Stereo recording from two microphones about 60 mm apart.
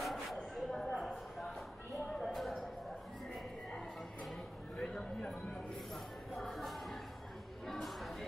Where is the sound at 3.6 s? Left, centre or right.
Centre.